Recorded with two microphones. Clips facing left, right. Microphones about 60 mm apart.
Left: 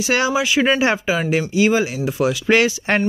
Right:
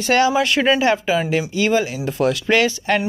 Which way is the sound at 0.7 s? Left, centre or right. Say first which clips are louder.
Right 1 dB; left.